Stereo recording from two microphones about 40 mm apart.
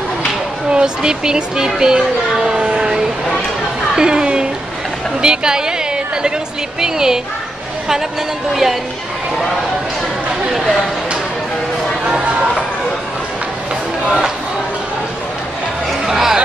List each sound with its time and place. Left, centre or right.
0.7 s speech: right
2.4 s a sound: right
3.9 s a sound: centre
5.2 s a woman's voice: centre
6.8 s speech: centre
15.9 s music: centre